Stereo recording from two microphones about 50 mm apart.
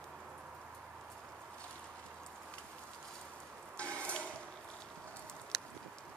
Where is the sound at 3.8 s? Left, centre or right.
Left.